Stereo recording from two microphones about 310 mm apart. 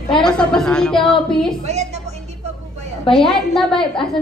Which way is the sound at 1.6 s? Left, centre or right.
Right.